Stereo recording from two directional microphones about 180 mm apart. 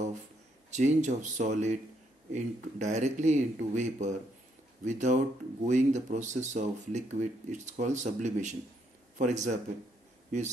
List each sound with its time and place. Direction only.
0.7 s speech: 40° right (ahead or behind)